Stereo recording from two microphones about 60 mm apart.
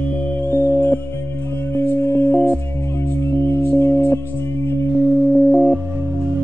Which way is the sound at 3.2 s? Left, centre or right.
Left.